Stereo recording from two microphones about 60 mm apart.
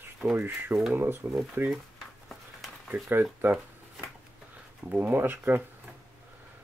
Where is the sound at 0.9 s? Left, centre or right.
Right.